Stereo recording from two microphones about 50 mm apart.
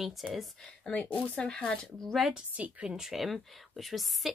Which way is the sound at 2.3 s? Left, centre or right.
Right.